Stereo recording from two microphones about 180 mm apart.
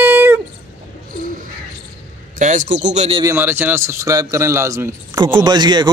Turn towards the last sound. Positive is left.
turn(degrees=-25)  # may be behind; listen again after turning